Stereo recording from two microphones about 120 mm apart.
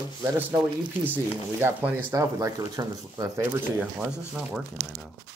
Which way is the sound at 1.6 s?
15° right (ahead or behind).